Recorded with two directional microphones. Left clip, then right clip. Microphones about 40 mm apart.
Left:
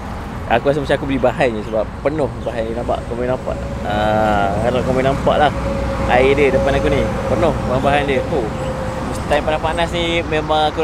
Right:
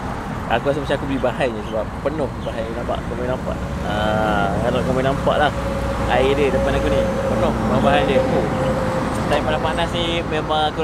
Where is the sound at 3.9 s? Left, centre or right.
Left.